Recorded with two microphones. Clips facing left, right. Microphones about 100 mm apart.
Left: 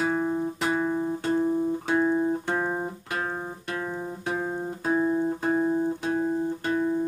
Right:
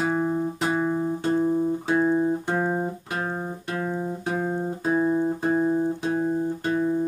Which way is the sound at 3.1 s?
15° right (ahead or behind).